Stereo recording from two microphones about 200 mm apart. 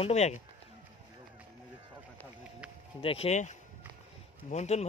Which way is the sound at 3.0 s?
30° left (ahead or behind).